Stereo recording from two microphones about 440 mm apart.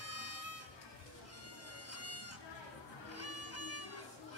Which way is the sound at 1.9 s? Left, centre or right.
Left.